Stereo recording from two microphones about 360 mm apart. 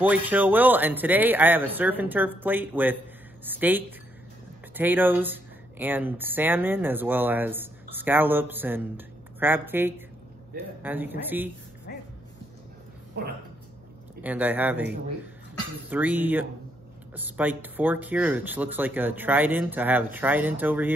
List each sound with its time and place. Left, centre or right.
0.0 s speech: centre
11.9 s dog: left
13.2 s speech: right
14.2 s speech: centre
15.9 s speech: centre